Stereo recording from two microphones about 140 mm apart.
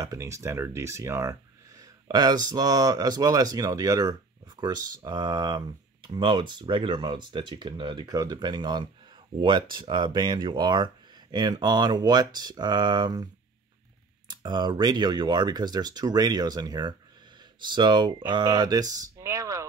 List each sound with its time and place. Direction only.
0.0 s speech: 25° right (ahead or behind)